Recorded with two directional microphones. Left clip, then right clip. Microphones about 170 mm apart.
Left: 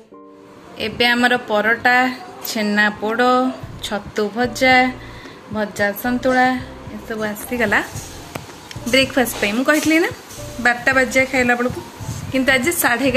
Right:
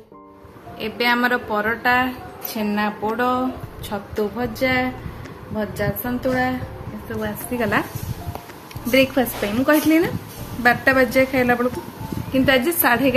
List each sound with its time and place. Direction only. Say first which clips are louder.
0.7 s a woman's voice: left 3 dB; 30° left (ahead or behind)
7.5 s a woman's voice: left 4 dB; 5° left (ahead or behind)
8.9 s a woman's voice: left 2 dB; 5° left (ahead or behind)